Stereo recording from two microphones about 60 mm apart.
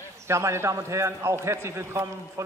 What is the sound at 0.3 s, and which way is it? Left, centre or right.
A man's voice, right.